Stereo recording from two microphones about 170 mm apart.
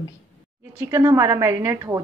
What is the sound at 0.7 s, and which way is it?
A woman's voice, 20° right (ahead or behind).